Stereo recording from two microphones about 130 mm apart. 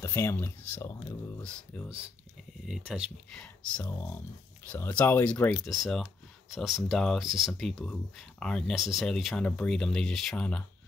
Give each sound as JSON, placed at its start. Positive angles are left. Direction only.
{"t": 0.0, "sound": "speech", "side_deg": 20}
{"t": 1.4, "sound": "speech", "side_deg": 10}
{"t": 2.6, "sound": "speech", "side_deg": -5}
{"t": 3.8, "sound": "speech", "side_deg": 15}
{"t": 5.7, "sound": "speech", "side_deg": 0}